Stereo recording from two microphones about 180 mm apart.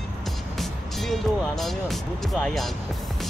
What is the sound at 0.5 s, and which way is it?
Speech, centre (ahead or behind).